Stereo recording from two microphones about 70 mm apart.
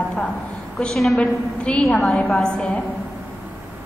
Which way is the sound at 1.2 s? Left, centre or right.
Centre.